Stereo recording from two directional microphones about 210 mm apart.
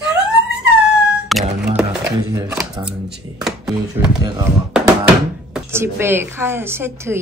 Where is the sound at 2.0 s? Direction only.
15° right (ahead or behind).